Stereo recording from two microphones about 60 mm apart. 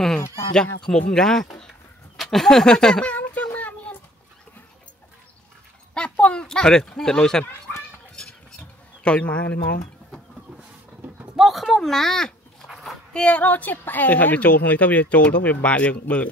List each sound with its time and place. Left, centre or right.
0.8 s speech: centre
3.2 s a sound: left
5.9 s speech: centre
8.2 s a sound: centre
11.3 s speech: centre
12.6 s dog: centre
13.1 s speech: centre